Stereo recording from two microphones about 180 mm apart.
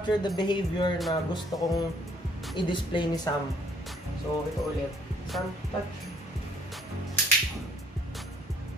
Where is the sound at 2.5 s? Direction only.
25° left (ahead or behind).